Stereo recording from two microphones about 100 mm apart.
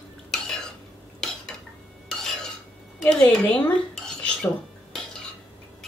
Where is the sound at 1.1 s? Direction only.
5° left (ahead or behind).